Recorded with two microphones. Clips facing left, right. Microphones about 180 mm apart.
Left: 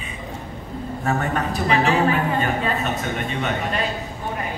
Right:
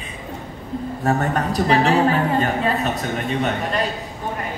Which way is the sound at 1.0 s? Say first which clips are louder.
Right 3 dB; 35° right (ahead or behind).